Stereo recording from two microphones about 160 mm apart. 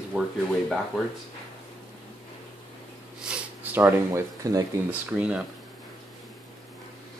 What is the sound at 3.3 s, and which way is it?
Speech, 15° right (ahead or behind).